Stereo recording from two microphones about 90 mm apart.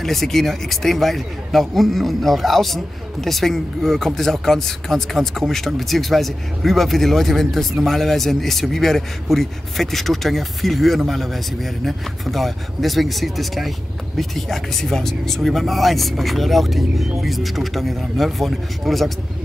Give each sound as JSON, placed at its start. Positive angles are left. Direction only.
{"t": 0.0, "sound": "a man's voice", "side_deg": 5}